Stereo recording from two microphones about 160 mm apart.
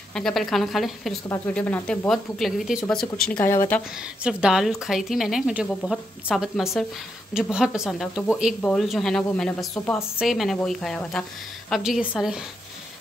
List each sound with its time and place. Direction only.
0.1 s speech: centre (ahead or behind)
4.2 s speech: 5° right (ahead or behind)